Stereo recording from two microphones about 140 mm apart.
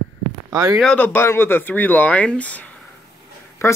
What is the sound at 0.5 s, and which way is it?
Speech, 25° right (ahead or behind).